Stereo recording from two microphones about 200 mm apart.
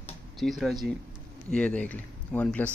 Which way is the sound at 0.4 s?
Centre (ahead or behind).